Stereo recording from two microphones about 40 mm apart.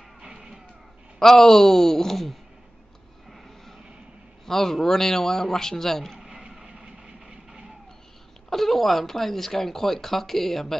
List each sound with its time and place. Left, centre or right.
0.2 s music: centre
1.2 s speech: centre
3.3 s vehicle: centre
4.5 s speech: centre
6.1 s vehicle: centre
8.5 s speech: centre